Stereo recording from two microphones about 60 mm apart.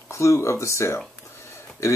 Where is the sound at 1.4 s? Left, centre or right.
Left.